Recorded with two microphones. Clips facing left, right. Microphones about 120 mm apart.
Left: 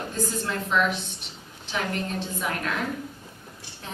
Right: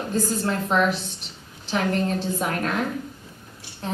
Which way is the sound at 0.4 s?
35° right (ahead or behind).